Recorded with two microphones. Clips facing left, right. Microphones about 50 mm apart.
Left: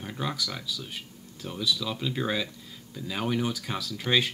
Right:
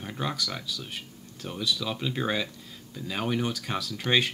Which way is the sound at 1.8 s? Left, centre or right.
Centre.